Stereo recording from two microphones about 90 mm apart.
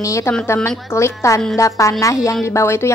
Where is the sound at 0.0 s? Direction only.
35° left (ahead or behind).